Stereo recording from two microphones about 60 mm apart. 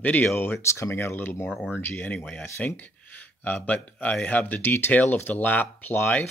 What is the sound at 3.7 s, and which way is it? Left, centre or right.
Speech, left.